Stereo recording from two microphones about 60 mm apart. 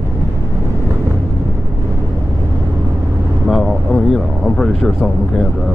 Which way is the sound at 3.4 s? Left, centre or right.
Centre.